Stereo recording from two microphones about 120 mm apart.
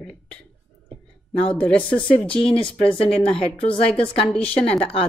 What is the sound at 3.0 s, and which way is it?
Speech, 10° left (ahead or behind).